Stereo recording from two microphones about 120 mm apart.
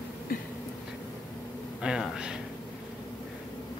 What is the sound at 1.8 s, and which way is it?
Speech, 5° right (ahead or behind).